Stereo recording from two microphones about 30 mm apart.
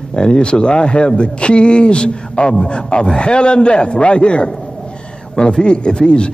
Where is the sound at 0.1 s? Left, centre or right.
Left.